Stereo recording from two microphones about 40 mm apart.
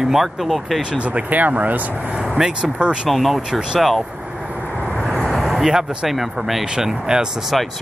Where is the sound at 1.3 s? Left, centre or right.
Right.